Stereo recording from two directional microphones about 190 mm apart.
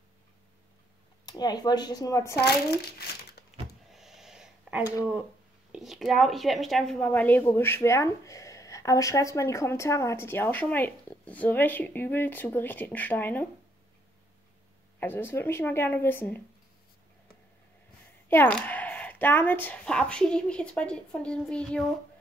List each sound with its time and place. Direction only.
1.2 s speech: 20° left (ahead or behind)
3.4 s a sound: 55° left (ahead or behind)
3.9 s a sound: centre (ahead or behind)
5.7 s a woman's voice: centre (ahead or behind)
15.0 s a woman's voice: 10° left (ahead or behind)
18.3 s speech: 10° left (ahead or behind)